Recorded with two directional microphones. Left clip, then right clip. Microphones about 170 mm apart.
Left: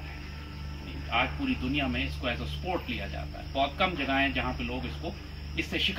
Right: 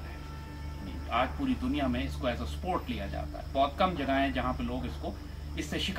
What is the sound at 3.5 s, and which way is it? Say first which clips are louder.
Speech: even; 15° right (ahead or behind).